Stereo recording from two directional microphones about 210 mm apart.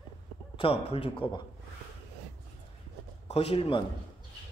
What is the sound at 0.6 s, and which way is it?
Speech, 25° left (ahead or behind).